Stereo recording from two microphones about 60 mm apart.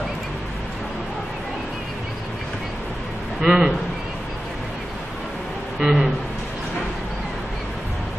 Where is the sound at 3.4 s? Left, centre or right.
Centre.